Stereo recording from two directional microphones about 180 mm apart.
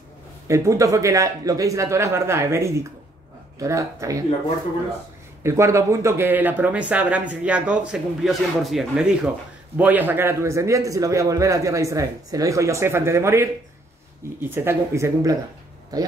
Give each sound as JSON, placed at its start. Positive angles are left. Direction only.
{"t": 0.5, "sound": "speech", "side_deg": -15}
{"t": 5.4, "sound": "speech", "side_deg": -15}